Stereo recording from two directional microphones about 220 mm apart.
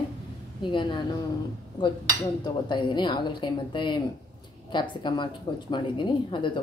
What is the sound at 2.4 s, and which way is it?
Speech, 20° left (ahead or behind).